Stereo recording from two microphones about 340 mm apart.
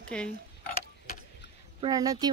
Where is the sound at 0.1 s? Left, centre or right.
Centre.